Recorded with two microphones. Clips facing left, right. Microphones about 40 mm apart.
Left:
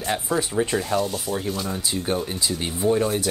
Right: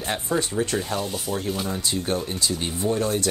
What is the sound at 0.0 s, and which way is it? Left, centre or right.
Speech, centre.